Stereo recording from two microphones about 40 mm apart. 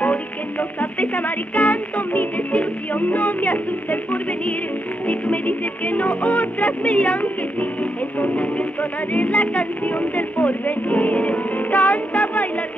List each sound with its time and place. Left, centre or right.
0.0 s music: left
8.2 s speech: left